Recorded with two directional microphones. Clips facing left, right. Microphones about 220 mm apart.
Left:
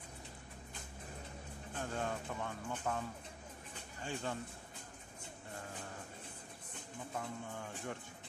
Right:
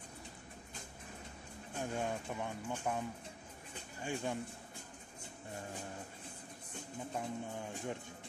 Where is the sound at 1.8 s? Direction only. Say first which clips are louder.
Right 2 dB; 15° right (ahead or behind).